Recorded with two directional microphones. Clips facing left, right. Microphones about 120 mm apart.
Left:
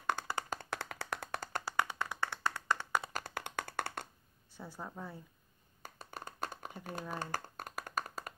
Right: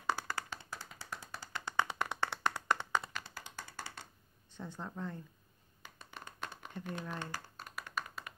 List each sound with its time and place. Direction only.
0.2 s clapping: 10° right (ahead or behind)
0.7 s clapping: 65° left (ahead or behind)
1.6 s clapping: 5° left (ahead or behind)
2.0 s clapping: 20° right (ahead or behind)
3.1 s clapping: 40° left (ahead or behind)
3.3 s clapping: 60° left (ahead or behind)
4.6 s speech: 10° left (ahead or behind)
5.8 s a sound: 45° left (ahead or behind)
6.8 s speech: 40° left (ahead or behind)
7.2 s a sound: 50° left (ahead or behind)